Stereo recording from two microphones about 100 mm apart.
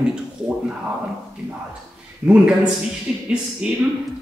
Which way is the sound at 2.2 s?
10° right (ahead or behind).